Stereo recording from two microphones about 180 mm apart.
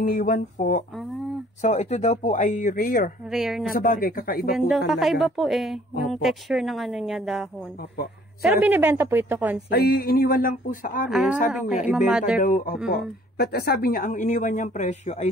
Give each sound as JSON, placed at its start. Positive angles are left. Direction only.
{"t": 0.0, "sound": "speech", "side_deg": 50}
{"t": 3.3, "sound": "speech", "side_deg": 0}
{"t": 3.7, "sound": "speech", "side_deg": 50}
{"t": 4.6, "sound": "a woman's voice", "side_deg": 0}
{"t": 9.7, "sound": "speech", "side_deg": 60}
{"t": 11.1, "sound": "speech", "side_deg": 0}
{"t": 12.4, "sound": "speech", "side_deg": 50}